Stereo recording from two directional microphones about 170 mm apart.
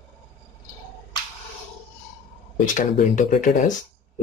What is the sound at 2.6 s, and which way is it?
Speech, 50° left (ahead or behind).